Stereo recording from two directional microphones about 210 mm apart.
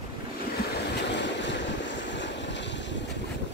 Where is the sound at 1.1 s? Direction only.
55° left (ahead or behind).